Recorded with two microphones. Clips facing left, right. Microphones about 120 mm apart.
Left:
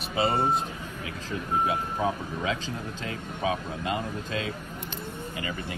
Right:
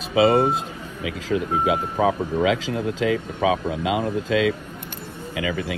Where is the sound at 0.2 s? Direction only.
90° right.